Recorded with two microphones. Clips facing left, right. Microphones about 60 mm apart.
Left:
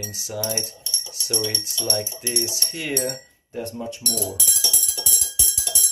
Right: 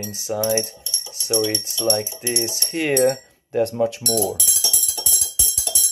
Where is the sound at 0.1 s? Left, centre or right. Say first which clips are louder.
Right 7 dB; right.